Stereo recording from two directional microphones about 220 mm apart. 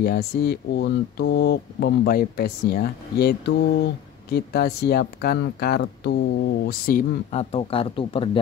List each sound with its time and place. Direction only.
0.0 s speech: 45° left (ahead or behind); by 8.3 s 25° left (ahead or behind)